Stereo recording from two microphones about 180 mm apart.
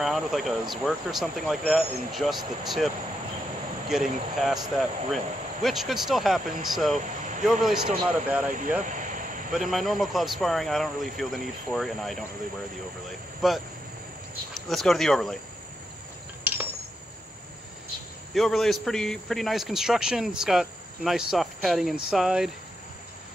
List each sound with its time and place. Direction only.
0.0 s a man's voice: centre (ahead or behind)
3.9 s a man's voice: centre (ahead or behind)
7.1 s a sound: 45° right (ahead or behind)
7.6 s a man's voice: 5° right (ahead or behind)
8.5 s speech: 45° right (ahead or behind)
8.8 s vehicle: 45° right (ahead or behind)
9.5 s a man's voice: centre (ahead or behind)
13.4 s a man's voice: centre (ahead or behind)
16.5 s cutlery: 10° right (ahead or behind)
18.3 s a man's voice: centre (ahead or behind)